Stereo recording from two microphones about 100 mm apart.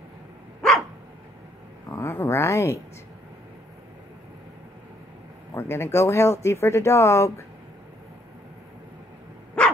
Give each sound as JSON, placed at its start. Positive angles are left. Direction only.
{"t": 0.6, "sound": "dog", "side_deg": 5}
{"t": 1.9, "sound": "speech", "side_deg": 25}
{"t": 5.5, "sound": "speech", "side_deg": 25}
{"t": 9.6, "sound": "dog", "side_deg": 10}